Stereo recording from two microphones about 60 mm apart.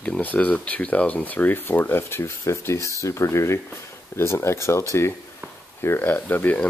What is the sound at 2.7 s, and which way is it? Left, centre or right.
Speech, left.